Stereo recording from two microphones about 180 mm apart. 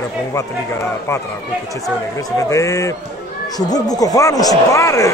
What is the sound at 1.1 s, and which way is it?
Speech, 15° left (ahead or behind).